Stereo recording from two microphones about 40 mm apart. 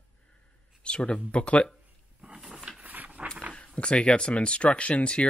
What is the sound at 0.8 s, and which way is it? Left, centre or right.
Speech, left.